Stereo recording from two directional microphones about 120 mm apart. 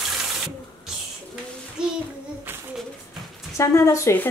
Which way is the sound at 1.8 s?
5° right (ahead or behind).